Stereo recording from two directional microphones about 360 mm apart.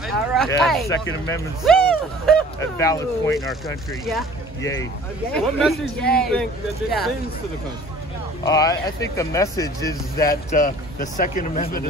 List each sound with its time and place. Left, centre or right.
0.0 s speech: centre
5.3 s speech: centre
8.5 s speech: centre
10.2 s speech: left